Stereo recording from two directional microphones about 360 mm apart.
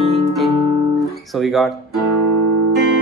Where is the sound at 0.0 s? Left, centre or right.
Centre.